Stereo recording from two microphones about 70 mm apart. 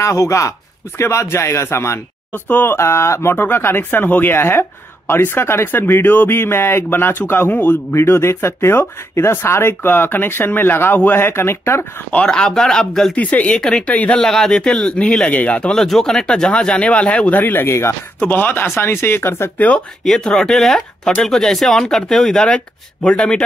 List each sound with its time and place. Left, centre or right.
0.0 s speech: left
2.3 s speech: left
12.1 s speech: centre
13.1 s speech: left
13.6 s speech: centre
14.2 s speech: centre
17.4 s speech: left
18.2 s speech: left
20.1 s speech: centre